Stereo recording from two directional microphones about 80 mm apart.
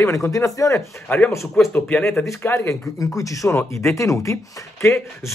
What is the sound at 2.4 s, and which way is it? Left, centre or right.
Speech, left.